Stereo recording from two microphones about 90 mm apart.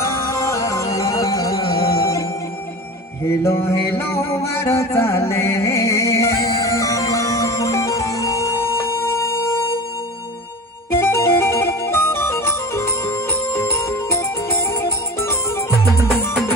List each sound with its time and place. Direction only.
0.0 s music: 35° left (ahead or behind)
3.3 s music: 30° left (ahead or behind)
11.0 s music: 30° left (ahead or behind)